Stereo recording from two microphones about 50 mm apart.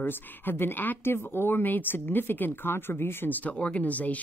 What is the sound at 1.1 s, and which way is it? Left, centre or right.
A woman's voice, left.